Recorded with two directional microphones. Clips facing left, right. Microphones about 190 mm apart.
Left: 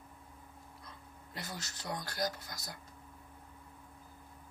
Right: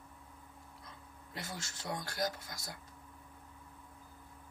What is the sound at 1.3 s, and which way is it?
Speech, 25° right (ahead or behind).